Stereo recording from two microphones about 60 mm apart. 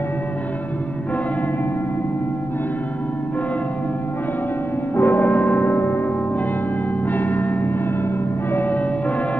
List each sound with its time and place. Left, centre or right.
4.9 s music: left
7.1 s church bell: left
8.5 s music: left